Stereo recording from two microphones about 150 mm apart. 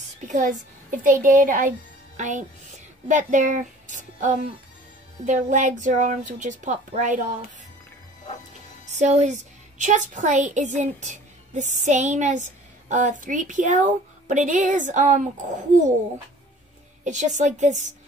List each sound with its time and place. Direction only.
0.2 s a woman's voice: 55° right (ahead or behind)
8.9 s a woman's voice: 50° right (ahead or behind)
17.0 s a woman's voice: 55° right (ahead or behind)